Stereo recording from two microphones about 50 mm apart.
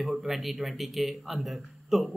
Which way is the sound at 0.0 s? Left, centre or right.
Centre.